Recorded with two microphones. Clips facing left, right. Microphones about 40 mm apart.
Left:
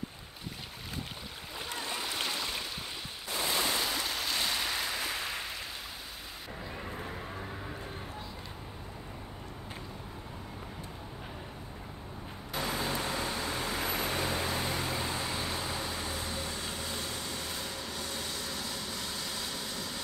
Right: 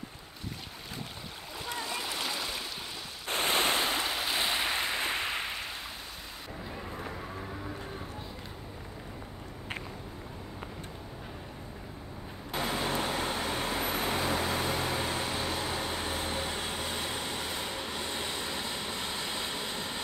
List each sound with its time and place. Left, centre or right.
2.2 s boat: centre
3.3 s stream: right
4.1 s a sound: centre
12.5 s vehicle: right